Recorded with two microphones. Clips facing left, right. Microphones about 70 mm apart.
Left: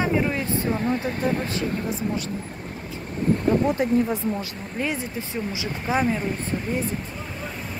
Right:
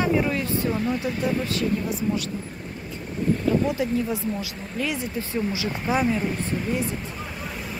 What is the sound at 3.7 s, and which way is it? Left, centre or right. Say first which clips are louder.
Speech: left 3 dB; left.